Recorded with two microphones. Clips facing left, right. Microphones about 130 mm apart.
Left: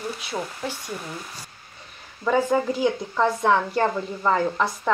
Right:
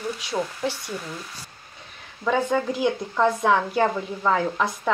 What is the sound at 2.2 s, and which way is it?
Speech, 5° left (ahead or behind).